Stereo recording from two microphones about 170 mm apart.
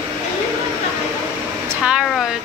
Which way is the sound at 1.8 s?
5° right (ahead or behind).